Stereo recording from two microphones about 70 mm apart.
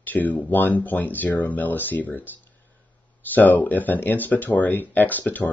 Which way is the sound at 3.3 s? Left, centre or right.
Left.